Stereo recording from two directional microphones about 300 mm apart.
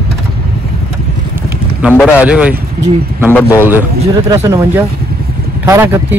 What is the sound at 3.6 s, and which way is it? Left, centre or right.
Speech, centre.